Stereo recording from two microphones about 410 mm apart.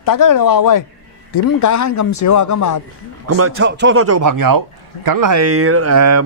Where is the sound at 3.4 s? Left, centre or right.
Right.